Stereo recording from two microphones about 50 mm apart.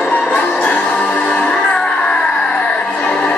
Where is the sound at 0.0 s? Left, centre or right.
Left.